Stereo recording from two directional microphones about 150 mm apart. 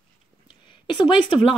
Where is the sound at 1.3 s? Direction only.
35° left (ahead or behind).